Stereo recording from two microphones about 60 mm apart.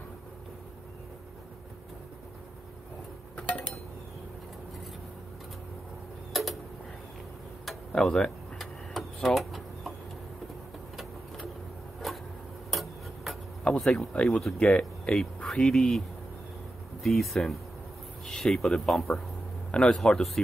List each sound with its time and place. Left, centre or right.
3.3 s dishes: centre
6.3 s tick-tock: centre
8.0 s a sound: centre
11.0 s vehicle: centre
12.0 s a sound: centre
12.7 s tick-tock: centre
13.7 s speech: centre
17.0 s speech: centre